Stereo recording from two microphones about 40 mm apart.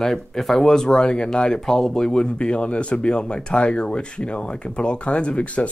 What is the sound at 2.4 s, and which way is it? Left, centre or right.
Speech, left.